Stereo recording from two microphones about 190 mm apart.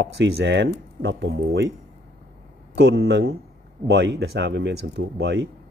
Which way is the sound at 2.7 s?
60° right (ahead or behind).